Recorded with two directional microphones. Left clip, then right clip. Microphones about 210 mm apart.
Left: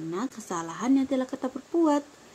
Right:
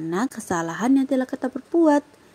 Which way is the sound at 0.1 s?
30° right (ahead or behind).